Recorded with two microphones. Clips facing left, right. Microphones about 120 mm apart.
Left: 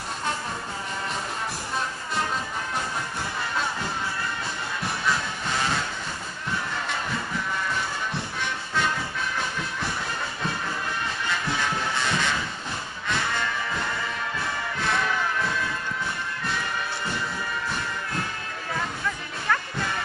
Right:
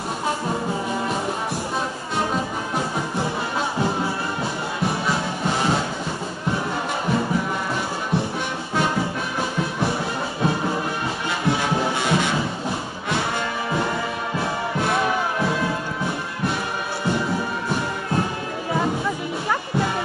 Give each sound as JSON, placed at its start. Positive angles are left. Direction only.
{"t": 5.0, "sound": "music", "side_deg": -30}
{"t": 11.2, "sound": "music", "side_deg": -15}
{"t": 13.1, "sound": "music", "side_deg": -30}
{"t": 15.0, "sound": "music", "side_deg": -25}
{"t": 18.7, "sound": "music", "side_deg": -20}